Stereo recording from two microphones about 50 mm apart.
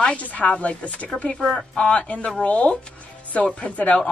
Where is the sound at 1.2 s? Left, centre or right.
Centre.